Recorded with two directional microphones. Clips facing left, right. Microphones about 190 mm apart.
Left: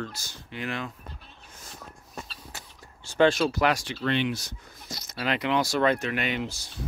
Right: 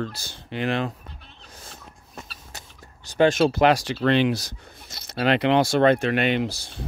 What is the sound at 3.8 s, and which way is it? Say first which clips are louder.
Speech: right 7 dB; 90° right.